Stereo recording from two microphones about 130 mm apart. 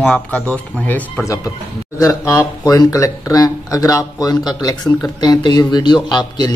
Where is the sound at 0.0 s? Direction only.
10° left (ahead or behind).